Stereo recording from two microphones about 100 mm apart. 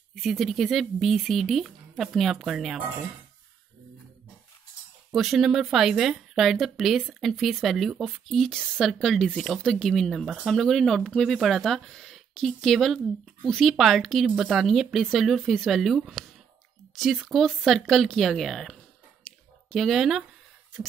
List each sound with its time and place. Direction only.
0.1 s speech: centre (ahead or behind)
5.1 s speech: 5° right (ahead or behind)